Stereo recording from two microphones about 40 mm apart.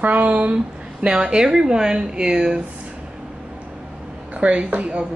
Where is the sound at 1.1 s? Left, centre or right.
Centre.